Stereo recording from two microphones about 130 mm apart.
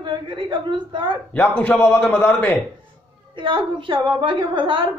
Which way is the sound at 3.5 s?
40° right (ahead or behind).